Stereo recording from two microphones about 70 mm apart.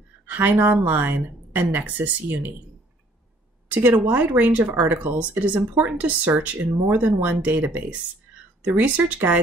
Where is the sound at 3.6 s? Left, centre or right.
Right.